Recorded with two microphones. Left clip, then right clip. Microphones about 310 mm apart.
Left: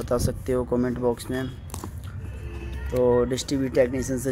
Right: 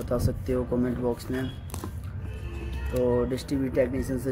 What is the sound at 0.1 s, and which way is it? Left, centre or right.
Speech, left.